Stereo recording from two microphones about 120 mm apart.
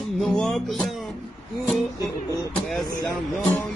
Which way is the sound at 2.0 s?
30° left (ahead or behind).